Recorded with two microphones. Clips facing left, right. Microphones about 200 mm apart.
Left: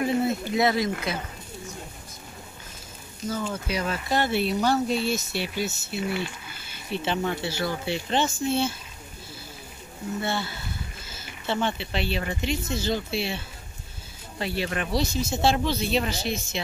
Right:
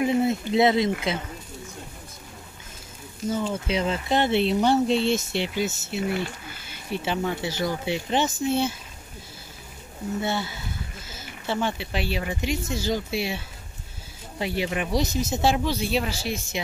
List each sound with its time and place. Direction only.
0.0 s speech: 20° right (ahead or behind)
3.4 s speech: 25° right (ahead or behind)
6.0 s speech: 45° right (ahead or behind)
6.9 s speech: 10° right (ahead or behind)
10.2 s speech: 15° right (ahead or behind)
14.4 s speech: 15° right (ahead or behind)